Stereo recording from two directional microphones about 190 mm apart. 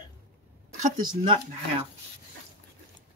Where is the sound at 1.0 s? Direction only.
25° right (ahead or behind).